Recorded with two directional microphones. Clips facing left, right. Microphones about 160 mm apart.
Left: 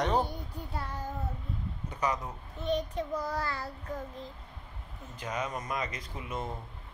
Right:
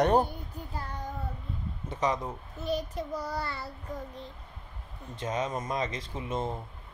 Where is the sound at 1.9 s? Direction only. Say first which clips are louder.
Right 3 dB; 25° right (ahead or behind).